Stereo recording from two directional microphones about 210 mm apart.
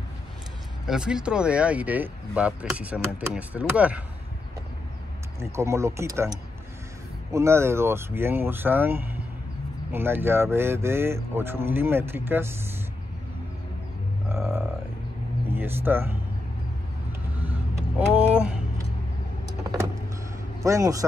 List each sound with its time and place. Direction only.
0.8 s speech: 5° right (ahead or behind)
5.4 s speech: 15° right (ahead or behind)
14.3 s a sound: 10° right (ahead or behind)
15.4 s vehicle: 10° right (ahead or behind)
17.4 s vehicle: 5° right (ahead or behind)
20.6 s speech: 15° right (ahead or behind)